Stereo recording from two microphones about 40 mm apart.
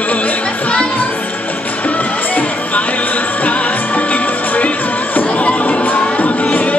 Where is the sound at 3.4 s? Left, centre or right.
Left.